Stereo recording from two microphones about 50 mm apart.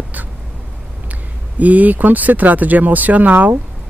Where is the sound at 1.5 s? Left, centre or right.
Right.